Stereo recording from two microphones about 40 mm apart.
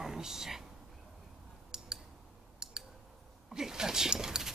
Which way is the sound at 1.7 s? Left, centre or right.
Centre.